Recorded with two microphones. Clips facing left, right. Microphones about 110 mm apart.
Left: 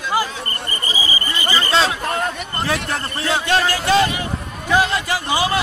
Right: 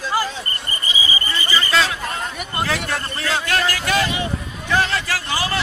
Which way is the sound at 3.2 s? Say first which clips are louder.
Left 3 dB; 25° left (ahead or behind).